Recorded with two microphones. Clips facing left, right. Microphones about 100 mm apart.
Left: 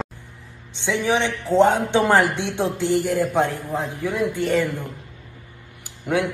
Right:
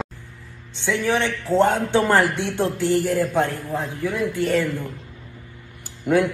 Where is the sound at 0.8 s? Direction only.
15° left (ahead or behind).